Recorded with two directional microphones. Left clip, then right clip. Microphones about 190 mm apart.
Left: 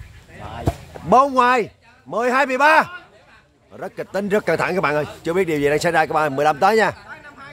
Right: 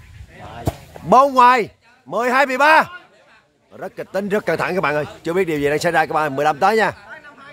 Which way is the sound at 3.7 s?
10° right (ahead or behind).